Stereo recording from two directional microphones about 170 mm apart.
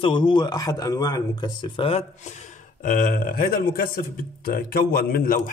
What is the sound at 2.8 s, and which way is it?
Speech, 50° left (ahead or behind).